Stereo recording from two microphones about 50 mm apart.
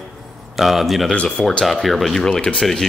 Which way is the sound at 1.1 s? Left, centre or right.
Centre.